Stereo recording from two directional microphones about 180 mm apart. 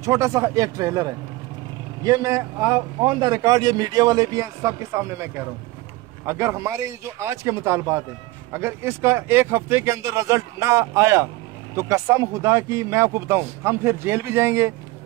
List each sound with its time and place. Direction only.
0.0 s speech: 15° right (ahead or behind)
2.0 s a man's voice: 15° right (ahead or behind)
6.2 s speech: 15° right (ahead or behind)